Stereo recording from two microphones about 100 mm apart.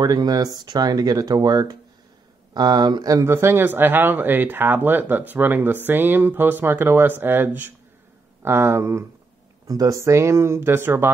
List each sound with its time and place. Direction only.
0.0 s speech: 40° right (ahead or behind); by 11.1 s 25° right (ahead or behind)